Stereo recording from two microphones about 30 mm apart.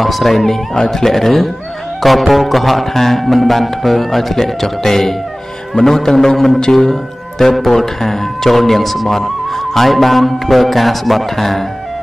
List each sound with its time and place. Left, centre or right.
0.0 s speech: centre
6.8 s music: centre
7.5 s speech: centre